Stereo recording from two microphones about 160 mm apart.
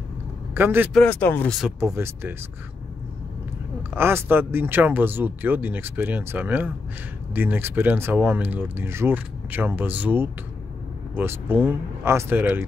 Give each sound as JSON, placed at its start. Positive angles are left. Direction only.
{"t": 0.6, "sound": "speech", "side_deg": -10}
{"t": 0.9, "sound": "speech", "side_deg": 10}
{"t": 2.0, "sound": "speech", "side_deg": -15}
{"t": 3.9, "sound": "speech", "side_deg": -15}